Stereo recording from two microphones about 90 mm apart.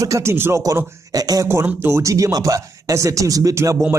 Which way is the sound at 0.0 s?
35° right (ahead or behind).